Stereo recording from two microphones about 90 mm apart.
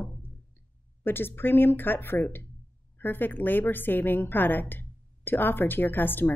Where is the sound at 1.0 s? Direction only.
25° left (ahead or behind).